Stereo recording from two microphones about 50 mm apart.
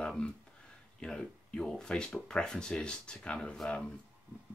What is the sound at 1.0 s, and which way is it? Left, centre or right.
Speech, centre.